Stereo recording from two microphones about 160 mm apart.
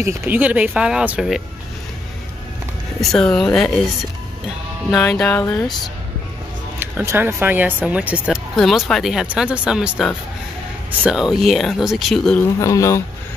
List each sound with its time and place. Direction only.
0.0 s speech: 15° right (ahead or behind)
3.0 s speech: 5° left (ahead or behind)
4.9 s music: 10° left (ahead or behind)
6.8 s speech: 15° right (ahead or behind); by 12.4 s 5° left (ahead or behind)
12.5 s speech: 20° left (ahead or behind)